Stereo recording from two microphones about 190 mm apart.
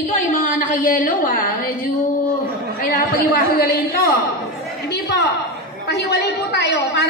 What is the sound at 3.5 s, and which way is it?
Speech, 55° left (ahead or behind).